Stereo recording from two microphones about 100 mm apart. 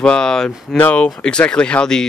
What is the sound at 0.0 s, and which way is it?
Speech, 5° left (ahead or behind).